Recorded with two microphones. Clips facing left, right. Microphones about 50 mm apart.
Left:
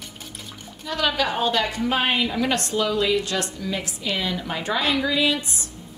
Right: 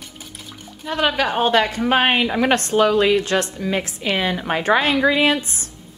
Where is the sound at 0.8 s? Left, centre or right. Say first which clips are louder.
Right 4 dB; right.